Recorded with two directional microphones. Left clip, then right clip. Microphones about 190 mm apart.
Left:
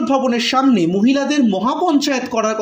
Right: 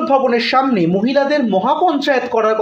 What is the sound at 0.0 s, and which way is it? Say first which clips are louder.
A man's voice: right 3 dB; 35° left (ahead or behind).